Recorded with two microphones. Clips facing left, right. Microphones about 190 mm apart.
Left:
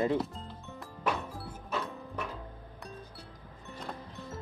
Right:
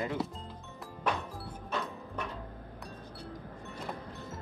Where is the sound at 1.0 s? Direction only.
Centre (ahead or behind).